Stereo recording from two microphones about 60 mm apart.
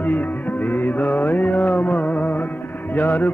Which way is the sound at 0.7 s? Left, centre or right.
Left.